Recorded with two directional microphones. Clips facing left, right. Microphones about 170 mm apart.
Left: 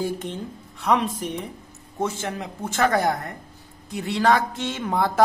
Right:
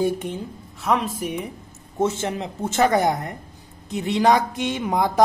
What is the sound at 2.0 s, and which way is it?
A woman's voice, 25° right (ahead or behind).